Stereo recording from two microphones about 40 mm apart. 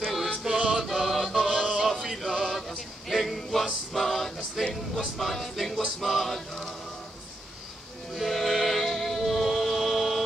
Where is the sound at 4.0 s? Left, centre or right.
Centre.